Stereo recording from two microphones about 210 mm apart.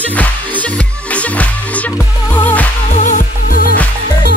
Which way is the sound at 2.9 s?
35° left (ahead or behind).